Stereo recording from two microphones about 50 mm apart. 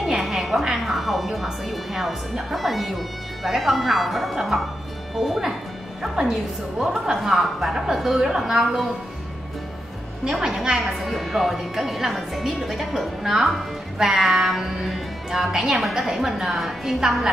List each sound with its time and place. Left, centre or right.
0.0 s music: centre
0.8 s a woman's voice: centre
6.2 s a woman's voice: centre
6.8 s a woman's voice: centre
10.2 s a woman's voice: centre